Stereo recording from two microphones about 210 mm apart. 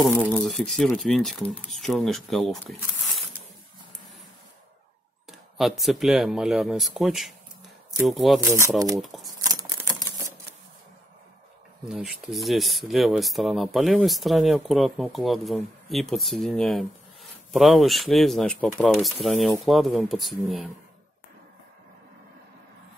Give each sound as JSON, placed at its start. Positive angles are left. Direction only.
{"t": 0.0, "sound": "speech", "side_deg": 5}
{"t": 5.6, "sound": "speech", "side_deg": 0}
{"t": 8.4, "sound": "speech", "side_deg": -15}
{"t": 8.9, "sound": "speech", "side_deg": 0}
{"t": 9.4, "sound": "typewriter", "side_deg": -20}
{"t": 11.8, "sound": "speech", "side_deg": 0}